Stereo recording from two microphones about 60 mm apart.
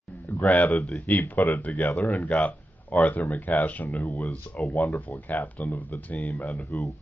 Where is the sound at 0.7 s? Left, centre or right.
Centre.